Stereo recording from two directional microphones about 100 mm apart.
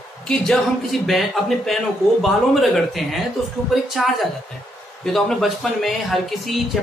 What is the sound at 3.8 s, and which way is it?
A man's voice, centre (ahead or behind).